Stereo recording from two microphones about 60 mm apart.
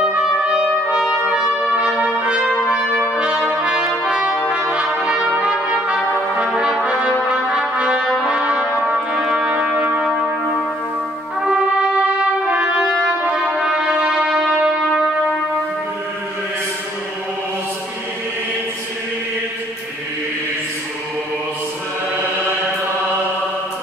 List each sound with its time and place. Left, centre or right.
0.0 s trumpet: centre
2.0 s trumpet: centre
3.4 s brass instrument: centre
8.3 s music: centre
9.1 s music: centre
11.4 s trumpet: centre